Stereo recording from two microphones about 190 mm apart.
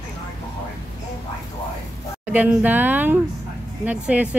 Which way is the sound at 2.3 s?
10° right (ahead or behind).